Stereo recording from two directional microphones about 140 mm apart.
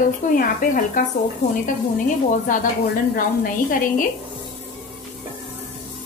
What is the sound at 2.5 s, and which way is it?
Speech, 70° left (ahead or behind).